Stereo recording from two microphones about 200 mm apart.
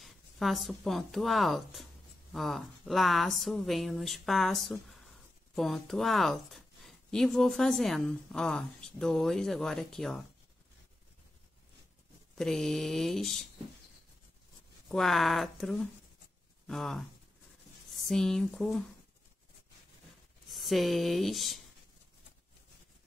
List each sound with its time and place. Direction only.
0.0 s a woman's voice: centre (ahead or behind)
12.4 s a woman's voice: centre (ahead or behind)
14.9 s a woman's voice: centre (ahead or behind)
20.5 s speech: centre (ahead or behind)